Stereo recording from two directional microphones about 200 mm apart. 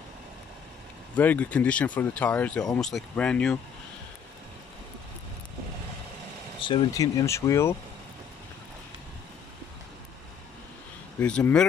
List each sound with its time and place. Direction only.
1.1 s speech: 10° left (ahead or behind)
6.6 s speech: 25° left (ahead or behind)
11.1 s speech: 10° left (ahead or behind)